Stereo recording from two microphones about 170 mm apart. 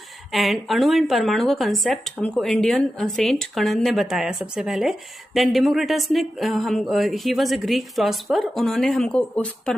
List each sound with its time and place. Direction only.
0.3 s speech: centre (ahead or behind)